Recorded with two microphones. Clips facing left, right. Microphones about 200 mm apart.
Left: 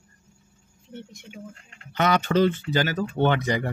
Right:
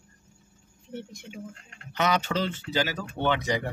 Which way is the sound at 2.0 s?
55° left (ahead or behind).